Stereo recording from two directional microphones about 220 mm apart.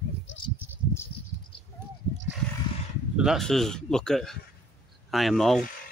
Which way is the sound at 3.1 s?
Centre (ahead or behind).